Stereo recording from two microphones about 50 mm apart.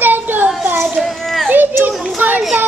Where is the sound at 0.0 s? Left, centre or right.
Right.